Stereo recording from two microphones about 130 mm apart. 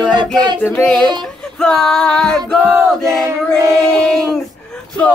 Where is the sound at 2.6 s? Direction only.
15° right (ahead or behind).